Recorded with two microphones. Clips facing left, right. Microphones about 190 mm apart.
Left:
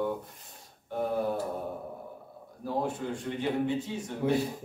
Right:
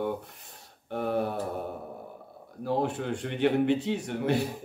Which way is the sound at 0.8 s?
70° right (ahead or behind).